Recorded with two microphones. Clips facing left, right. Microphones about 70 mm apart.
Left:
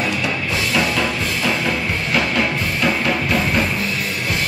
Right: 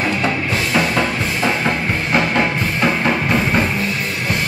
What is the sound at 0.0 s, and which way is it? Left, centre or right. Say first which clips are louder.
Music: right 3 dB; right.